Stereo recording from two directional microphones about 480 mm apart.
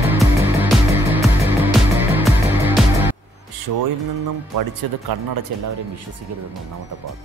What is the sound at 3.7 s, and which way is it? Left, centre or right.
Mantra, right.